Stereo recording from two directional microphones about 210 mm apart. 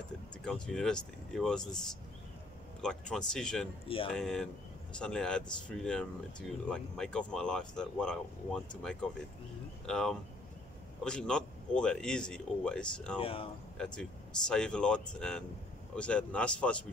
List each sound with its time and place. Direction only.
0.5 s speech: 5° left (ahead or behind)
2.8 s speech: 5° left (ahead or behind)
3.8 s speech: 25° left (ahead or behind)
4.1 s speech: 5° left (ahead or behind)
13.2 s speech: 25° left (ahead or behind)
13.7 s speech: 5° left (ahead or behind)